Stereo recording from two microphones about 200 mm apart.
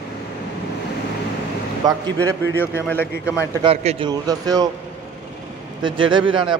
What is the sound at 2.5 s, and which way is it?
Speech, 10° left (ahead or behind).